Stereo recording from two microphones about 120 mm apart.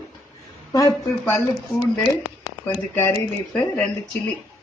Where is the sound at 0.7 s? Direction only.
25° left (ahead or behind).